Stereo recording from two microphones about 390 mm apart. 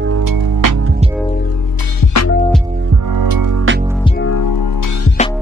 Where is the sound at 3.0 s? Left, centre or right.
Right.